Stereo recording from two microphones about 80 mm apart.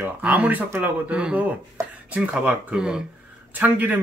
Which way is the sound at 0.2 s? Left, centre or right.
Centre.